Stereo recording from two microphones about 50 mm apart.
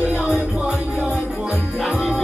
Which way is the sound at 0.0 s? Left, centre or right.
Right.